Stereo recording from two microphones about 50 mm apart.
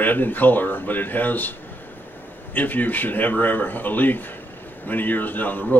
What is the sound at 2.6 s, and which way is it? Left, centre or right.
A man's voice, left.